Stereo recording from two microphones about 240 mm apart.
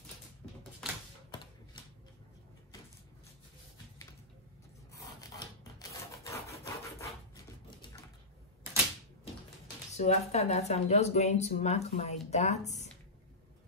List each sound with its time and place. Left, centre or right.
1.3 s typewriter: centre
4.9 s filing: centre
9.9 s speech: left